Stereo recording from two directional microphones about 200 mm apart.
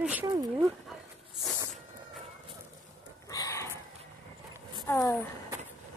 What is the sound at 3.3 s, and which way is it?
Chicken, 15° left (ahead or behind).